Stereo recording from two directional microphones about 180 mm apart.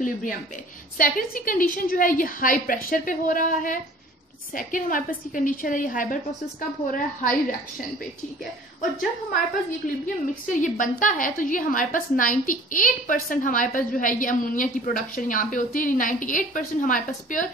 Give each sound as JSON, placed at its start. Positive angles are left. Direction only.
{"t": 0.0, "sound": "a woman's voice", "side_deg": 50}
{"t": 10.0, "sound": "a woman's voice", "side_deg": 45}